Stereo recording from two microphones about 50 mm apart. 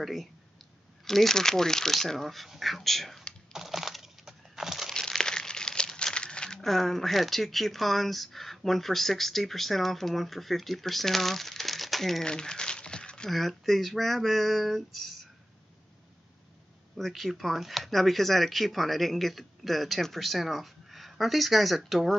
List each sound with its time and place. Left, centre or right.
0.0 s speech: centre
3.5 s a sound: centre
4.9 s crumpling: centre
6.6 s speech: centre
12.3 s crumpling: centre
13.3 s speech: centre
16.9 s speech: centre